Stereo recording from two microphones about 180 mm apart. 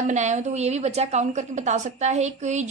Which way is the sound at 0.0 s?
40° right (ahead or behind).